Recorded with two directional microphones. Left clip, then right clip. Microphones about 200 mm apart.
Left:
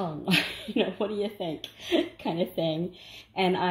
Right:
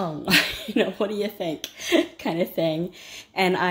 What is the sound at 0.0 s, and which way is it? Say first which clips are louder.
Speech: right 6 dB; 10° right (ahead or behind).